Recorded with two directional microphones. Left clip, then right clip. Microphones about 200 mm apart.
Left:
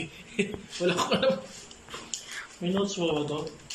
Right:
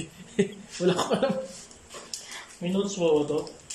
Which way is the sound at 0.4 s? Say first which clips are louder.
Right 2 dB; 15° right (ahead or behind).